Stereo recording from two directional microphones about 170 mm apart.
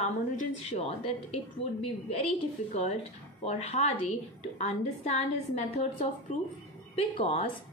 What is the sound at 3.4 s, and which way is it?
Speech, 40° left (ahead or behind).